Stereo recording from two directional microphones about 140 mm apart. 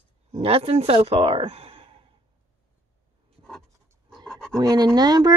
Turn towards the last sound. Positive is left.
turn(degrees=-30)  # may be behind; listen again after turning